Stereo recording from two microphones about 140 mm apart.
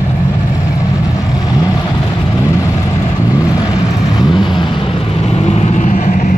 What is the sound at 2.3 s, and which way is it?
Vehicle, 20° left (ahead or behind).